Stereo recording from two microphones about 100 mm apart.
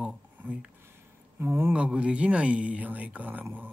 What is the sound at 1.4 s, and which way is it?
Speech, 20° right (ahead or behind).